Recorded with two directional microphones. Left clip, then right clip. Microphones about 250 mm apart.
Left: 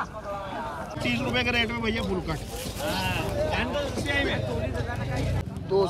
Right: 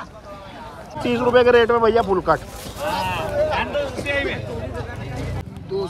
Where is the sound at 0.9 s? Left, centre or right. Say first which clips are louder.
Right 12 dB; centre.